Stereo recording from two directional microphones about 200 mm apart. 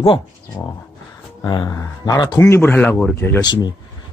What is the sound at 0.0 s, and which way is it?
A man's voice, 25° left (ahead or behind).